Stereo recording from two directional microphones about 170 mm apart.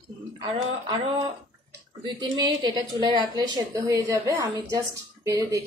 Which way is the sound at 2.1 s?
25° right (ahead or behind).